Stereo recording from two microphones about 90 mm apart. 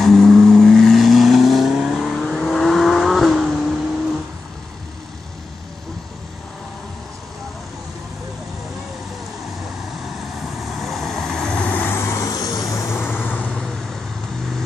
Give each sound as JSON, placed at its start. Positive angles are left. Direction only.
{"t": 0.0, "sound": "vehicle", "side_deg": 5}
{"t": 10.0, "sound": "vehicle", "side_deg": 0}
{"t": 11.9, "sound": "vehicle", "side_deg": 30}
{"t": 13.0, "sound": "vehicle", "side_deg": 20}